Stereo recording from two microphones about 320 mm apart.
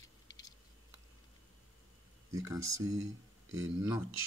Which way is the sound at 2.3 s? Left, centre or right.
Centre.